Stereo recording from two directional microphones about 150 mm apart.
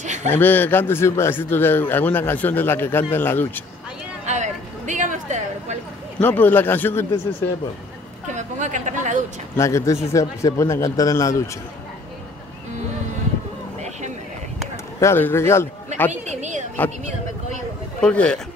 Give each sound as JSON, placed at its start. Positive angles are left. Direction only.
{"t": 0.0, "sound": "a sound", "side_deg": -50}
{"t": 0.3, "sound": "a man's voice", "side_deg": 15}
{"t": 4.3, "sound": "a sound", "side_deg": -55}
{"t": 6.1, "sound": "a man's voice", "side_deg": 10}
{"t": 8.3, "sound": "speech", "side_deg": -55}
{"t": 9.6, "sound": "a man's voice", "side_deg": 20}
{"t": 15.0, "sound": "a man's voice", "side_deg": 15}
{"t": 16.1, "sound": "a woman's voice", "side_deg": -50}
{"t": 18.0, "sound": "a man's voice", "side_deg": 5}